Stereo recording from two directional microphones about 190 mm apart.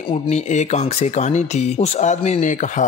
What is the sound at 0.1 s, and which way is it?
Speech, 40° left (ahead or behind).